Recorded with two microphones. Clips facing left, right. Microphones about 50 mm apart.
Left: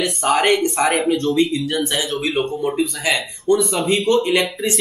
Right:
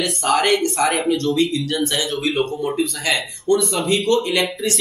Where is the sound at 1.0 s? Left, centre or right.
Centre.